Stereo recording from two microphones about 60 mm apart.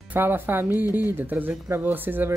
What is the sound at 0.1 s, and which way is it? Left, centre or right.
Speech, right.